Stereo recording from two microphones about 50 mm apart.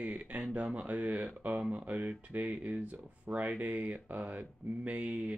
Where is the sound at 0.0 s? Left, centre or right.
Right.